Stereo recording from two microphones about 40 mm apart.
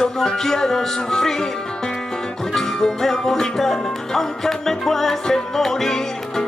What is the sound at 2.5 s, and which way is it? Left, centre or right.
Music, centre.